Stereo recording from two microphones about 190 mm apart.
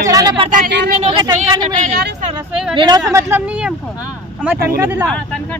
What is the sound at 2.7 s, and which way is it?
Speech, 25° right (ahead or behind).